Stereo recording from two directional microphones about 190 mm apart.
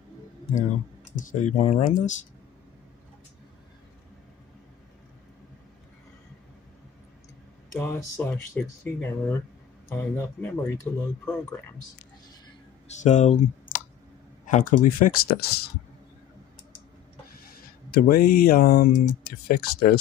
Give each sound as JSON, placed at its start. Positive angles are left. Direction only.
{"t": 1.1, "sound": "speech", "side_deg": 40}
{"t": 7.7, "sound": "speech", "side_deg": 15}
{"t": 12.8, "sound": "speech", "side_deg": 40}
{"t": 17.3, "sound": "speech", "side_deg": 50}